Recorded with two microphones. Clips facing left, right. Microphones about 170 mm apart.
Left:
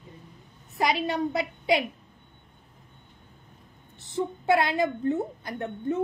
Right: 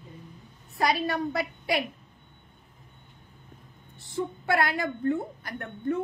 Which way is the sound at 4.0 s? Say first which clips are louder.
Left 2 dB; 20° left (ahead or behind).